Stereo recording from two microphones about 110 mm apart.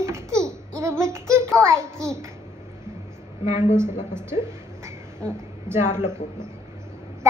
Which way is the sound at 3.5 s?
90° left.